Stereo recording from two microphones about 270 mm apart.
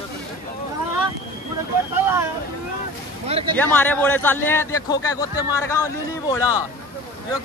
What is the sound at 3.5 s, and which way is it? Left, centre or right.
A man's voice, centre.